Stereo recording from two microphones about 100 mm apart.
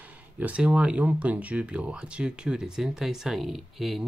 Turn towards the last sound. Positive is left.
turn(degrees=-5)  # may be behind; listen again after turning